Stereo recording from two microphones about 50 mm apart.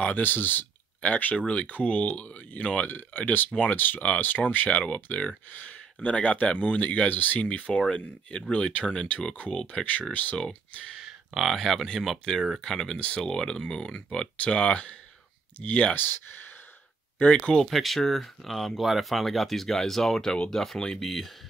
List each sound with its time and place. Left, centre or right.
0.0 s speech: left
1.3 s speech: centre; by 4.6 s left
4.6 s speech: left
7.4 s speech: left
11.5 s speech: centre
14.3 s speech: left
15.9 s speech: left
17.2 s speech: left
17.6 s speech: centre